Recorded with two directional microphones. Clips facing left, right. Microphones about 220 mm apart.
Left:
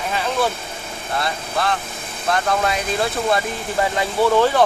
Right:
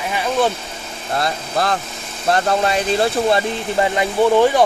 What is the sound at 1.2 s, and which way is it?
Speech, 40° right (ahead or behind).